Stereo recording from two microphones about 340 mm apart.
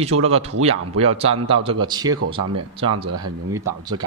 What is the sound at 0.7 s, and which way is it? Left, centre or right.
A man's voice, centre.